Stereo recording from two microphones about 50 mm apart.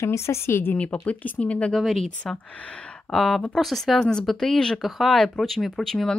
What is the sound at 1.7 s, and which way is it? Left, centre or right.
Speech, centre.